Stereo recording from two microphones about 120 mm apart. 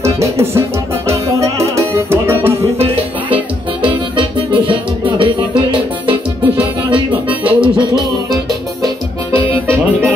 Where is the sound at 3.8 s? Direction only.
45° right (ahead or behind).